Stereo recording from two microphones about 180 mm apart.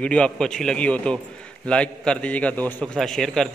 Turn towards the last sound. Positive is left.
turn(degrees=5)  # may be behind; listen again after turning